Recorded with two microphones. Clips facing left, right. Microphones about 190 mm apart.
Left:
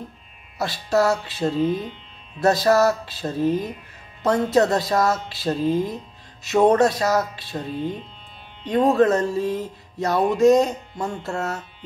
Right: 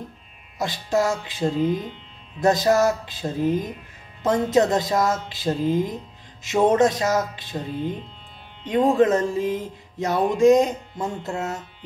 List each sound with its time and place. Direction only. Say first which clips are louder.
0.6 s music: left 2 dB; 15° right (ahead or behind)